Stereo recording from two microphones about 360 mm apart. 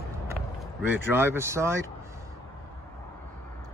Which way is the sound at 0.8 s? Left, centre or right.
Centre.